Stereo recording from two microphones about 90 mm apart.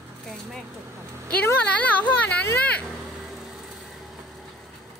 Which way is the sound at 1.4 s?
20° left (ahead or behind).